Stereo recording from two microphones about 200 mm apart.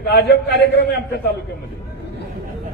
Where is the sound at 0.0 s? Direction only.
55° left (ahead or behind).